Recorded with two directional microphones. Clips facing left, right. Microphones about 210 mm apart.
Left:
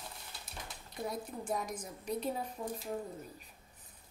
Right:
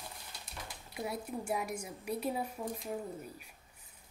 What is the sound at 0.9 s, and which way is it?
A woman's voice, 10° right (ahead or behind).